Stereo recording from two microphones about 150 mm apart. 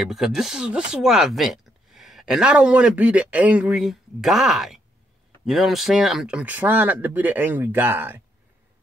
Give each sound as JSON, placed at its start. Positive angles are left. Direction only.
{"t": 0.0, "sound": "speech", "side_deg": 0}